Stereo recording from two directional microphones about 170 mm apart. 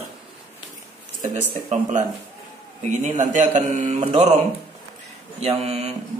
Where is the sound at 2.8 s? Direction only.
45° right (ahead or behind).